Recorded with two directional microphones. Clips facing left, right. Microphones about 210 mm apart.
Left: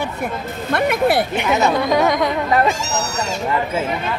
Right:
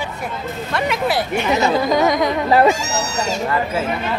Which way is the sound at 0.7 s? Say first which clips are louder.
Left 4 dB; 55° left (ahead or behind).